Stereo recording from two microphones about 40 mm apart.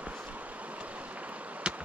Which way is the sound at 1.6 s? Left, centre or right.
Right.